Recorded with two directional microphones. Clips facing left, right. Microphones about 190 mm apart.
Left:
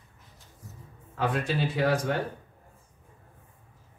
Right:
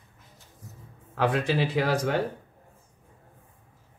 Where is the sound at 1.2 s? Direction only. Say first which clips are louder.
Right 3 dB; 75° right (ahead or behind).